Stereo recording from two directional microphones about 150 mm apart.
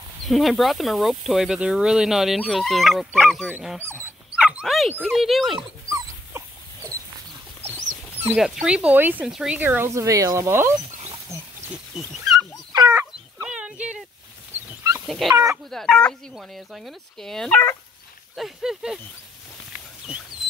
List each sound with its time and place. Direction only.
0.2 s speech: centre (ahead or behind)
3.5 s speech: 10° right (ahead or behind)
5.6 s dog: 20° right (ahead or behind)
7.6 s a sound: 45° right (ahead or behind)
8.4 s speech: 5° right (ahead or behind)
11.9 s speech: 5° right (ahead or behind)
12.9 s dog: 10° right (ahead or behind)
15.0 s speech: centre (ahead or behind)